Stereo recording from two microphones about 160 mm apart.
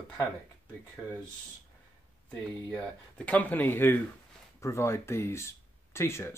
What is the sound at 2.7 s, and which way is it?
Speech, 5° left (ahead or behind).